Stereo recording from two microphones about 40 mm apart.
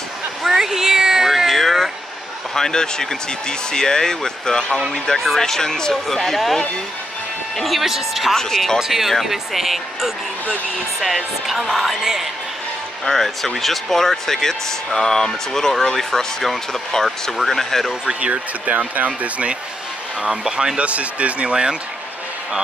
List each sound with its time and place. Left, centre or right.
0.4 s cat: centre
1.6 s a sound: centre
2.5 s speech: centre
6.0 s speech: centre
8.4 s speech: centre
8.7 s speech: centre
13.0 s speech: centre
18.2 s speech: right
20.2 s speech: centre
20.8 s speech: right